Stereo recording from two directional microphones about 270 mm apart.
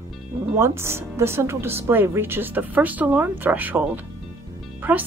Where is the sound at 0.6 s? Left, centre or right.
Centre.